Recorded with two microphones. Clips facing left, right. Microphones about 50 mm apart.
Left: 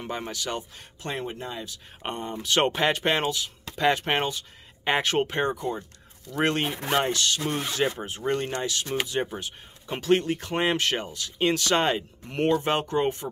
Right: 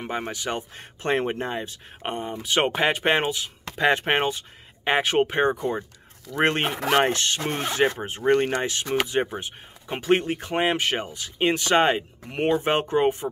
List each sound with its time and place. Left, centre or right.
0.0 s speech: right
1.1 s speech: right
2.0 s speech: centre
4.8 s speech: centre
5.6 s speech: right
6.7 s speech: right
7.1 s speech: right; by 13.3 s centre